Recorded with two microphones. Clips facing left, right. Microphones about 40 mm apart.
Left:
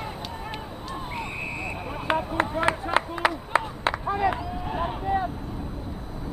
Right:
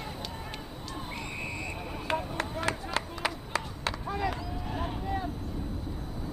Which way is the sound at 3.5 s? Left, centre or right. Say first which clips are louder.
Left 8 dB; left.